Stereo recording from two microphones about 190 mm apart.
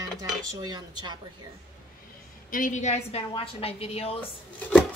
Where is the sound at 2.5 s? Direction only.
45° left (ahead or behind).